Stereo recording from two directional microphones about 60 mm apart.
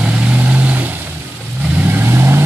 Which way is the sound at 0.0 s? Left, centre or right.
Centre.